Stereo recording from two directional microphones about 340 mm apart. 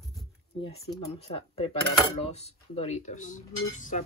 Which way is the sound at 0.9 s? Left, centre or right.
Centre.